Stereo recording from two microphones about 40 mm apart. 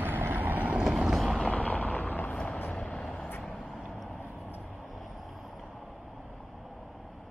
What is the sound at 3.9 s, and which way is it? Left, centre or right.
Vehicle, centre.